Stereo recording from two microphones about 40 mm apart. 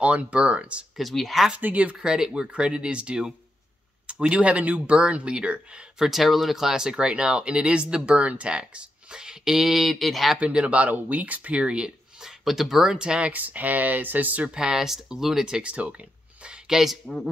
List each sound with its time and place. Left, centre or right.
0.0 s speech: right
0.9 s speech: centre
1.6 s speech: right
2.0 s speech: centre
5.9 s speech: centre
10.4 s speech: right
12.2 s speech: centre
12.9 s speech: right
13.3 s speech: right
14.5 s speech: centre
15.4 s speech: right
16.6 s speech: centre